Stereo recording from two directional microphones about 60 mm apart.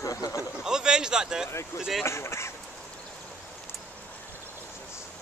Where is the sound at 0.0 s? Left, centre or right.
Left.